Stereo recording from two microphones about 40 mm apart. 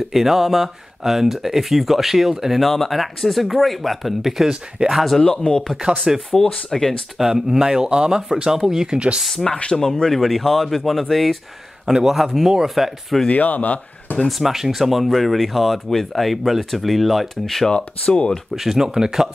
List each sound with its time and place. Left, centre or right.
0.1 s speech: centre
2.6 s speech: centre
5.5 s speech: left
6.3 s speech: centre
7.2 s speech: centre
8.9 s speech: right
9.3 s speech: centre
10.1 s speech: centre
11.8 s speech: centre
13.3 s speech: left
14.1 s speech: centre
14.4 s speech: centre
17.6 s speech: left
18.6 s speech: centre